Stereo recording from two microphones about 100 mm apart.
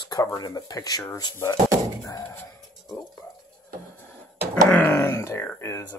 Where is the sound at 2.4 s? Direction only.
35° left (ahead or behind).